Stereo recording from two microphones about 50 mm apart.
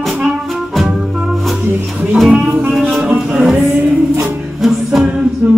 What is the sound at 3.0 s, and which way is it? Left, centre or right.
Music, centre.